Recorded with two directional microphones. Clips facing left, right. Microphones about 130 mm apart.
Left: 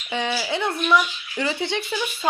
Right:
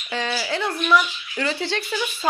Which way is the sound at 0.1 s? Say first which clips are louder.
Left 1 dB; 15° left (ahead or behind).